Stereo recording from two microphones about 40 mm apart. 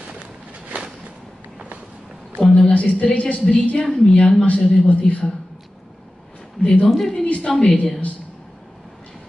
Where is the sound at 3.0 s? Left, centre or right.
Left.